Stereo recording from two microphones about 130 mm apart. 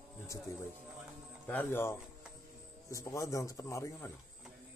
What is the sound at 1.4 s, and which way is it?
A man's voice, 15° left (ahead or behind).